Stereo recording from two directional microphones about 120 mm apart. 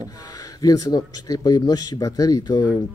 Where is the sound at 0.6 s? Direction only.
30° left (ahead or behind).